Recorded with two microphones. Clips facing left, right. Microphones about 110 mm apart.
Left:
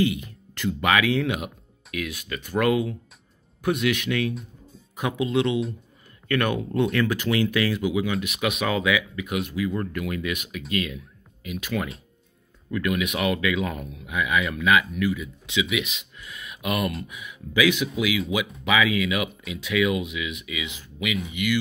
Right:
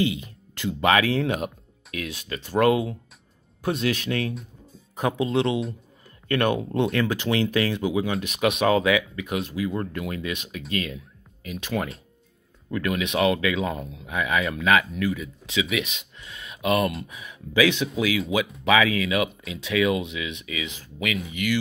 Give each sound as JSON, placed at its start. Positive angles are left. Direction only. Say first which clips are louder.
{"t": 0.0, "sound": "speech", "louder": "left 1 dB", "side_deg": -20}